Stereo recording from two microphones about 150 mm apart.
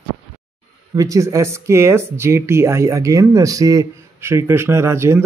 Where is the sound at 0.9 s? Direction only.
20° right (ahead or behind).